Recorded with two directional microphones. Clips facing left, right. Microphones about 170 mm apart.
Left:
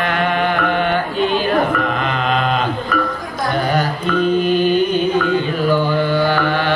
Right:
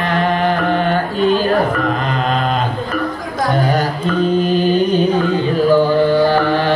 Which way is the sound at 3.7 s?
35° right (ahead or behind).